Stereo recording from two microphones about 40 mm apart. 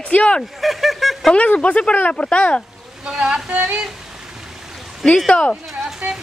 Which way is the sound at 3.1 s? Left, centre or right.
Centre.